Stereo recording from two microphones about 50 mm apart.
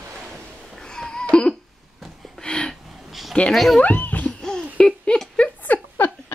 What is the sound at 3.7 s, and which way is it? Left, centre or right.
Music, left.